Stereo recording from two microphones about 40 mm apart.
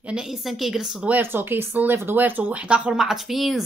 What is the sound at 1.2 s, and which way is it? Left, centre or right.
Speech, right.